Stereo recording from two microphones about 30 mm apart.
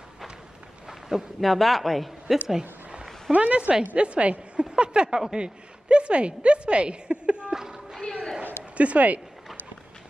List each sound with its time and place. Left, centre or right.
0.8 s a sound: centre
1.4 s speech: centre
3.3 s a woman's voice: right
4.6 s a woman's voice: right
7.5 s a sound: centre
8.7 s speech: right